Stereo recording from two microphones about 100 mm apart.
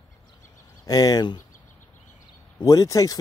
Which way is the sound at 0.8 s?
40° left (ahead or behind).